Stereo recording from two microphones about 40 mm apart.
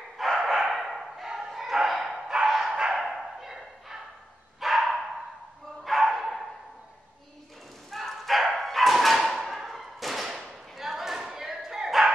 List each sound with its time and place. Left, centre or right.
0.2 s dog: centre
0.6 s bow-wow: centre
2.4 s dog: centre
2.7 s dog: right
3.0 s bow-wow: centre
4.6 s dog: centre
5.9 s bow-wow: centre
7.9 s bow-wow: centre
8.5 s thump: centre
10.8 s a sound: centre